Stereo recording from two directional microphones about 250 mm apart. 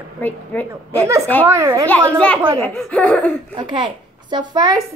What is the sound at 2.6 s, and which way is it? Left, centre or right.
Speech, centre.